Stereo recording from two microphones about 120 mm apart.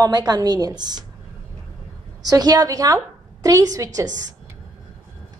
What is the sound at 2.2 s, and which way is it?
A woman's voice, 30° right (ahead or behind).